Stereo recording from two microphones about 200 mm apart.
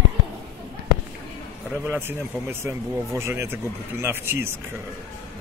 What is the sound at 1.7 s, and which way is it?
Speech, 10° right (ahead or behind).